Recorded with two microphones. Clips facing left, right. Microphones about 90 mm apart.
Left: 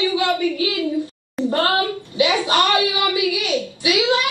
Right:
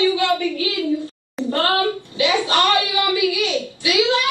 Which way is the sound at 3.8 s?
20° left (ahead or behind).